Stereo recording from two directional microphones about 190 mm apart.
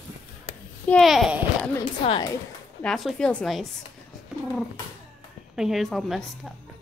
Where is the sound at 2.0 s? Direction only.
25° left (ahead or behind).